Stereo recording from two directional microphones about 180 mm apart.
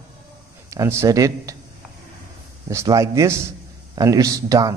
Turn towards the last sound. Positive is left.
turn(degrees=-20)  # may be behind; listen again after turning